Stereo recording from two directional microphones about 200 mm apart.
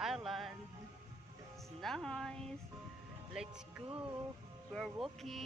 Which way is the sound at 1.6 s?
Centre (ahead or behind).